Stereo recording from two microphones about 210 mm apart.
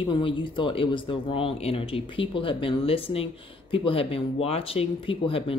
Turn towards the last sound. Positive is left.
turn(degrees=25)  # may be behind; listen again after turning